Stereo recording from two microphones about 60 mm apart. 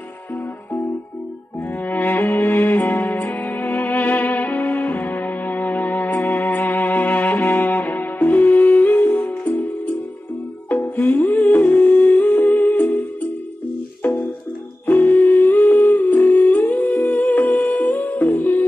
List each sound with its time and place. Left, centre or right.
1.8 s music: left
11.0 s humming: left
14.9 s music: left